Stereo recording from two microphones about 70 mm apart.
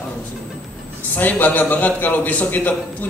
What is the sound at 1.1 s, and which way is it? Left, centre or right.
A man's voice, left.